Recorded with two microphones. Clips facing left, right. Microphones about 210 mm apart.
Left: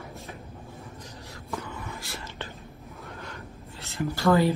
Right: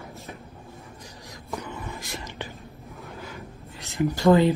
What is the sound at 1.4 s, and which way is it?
Whispering, 15° right (ahead or behind).